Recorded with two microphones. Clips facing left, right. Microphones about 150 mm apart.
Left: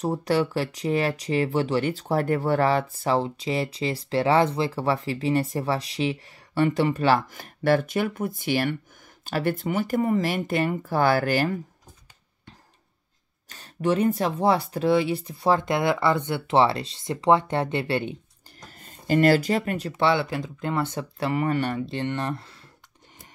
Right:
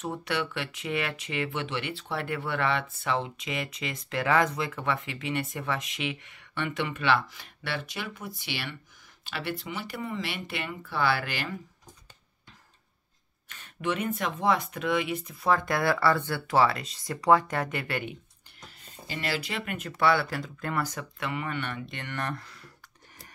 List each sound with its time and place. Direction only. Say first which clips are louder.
0.0 s speech: left 8 dB; 35° left (ahead or behind)
13.5 s speech: left 7 dB; 35° left (ahead or behind)
18.6 s speech: left 1 dB; 45° left (ahead or behind); by 22.7 s 30° left (ahead or behind)